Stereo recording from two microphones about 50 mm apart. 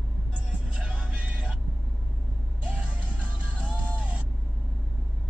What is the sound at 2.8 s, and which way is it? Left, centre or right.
Music, right.